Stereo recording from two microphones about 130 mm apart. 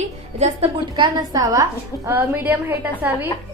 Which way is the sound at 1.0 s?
30° right (ahead or behind).